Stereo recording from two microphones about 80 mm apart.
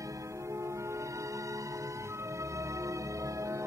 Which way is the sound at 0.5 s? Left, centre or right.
Right.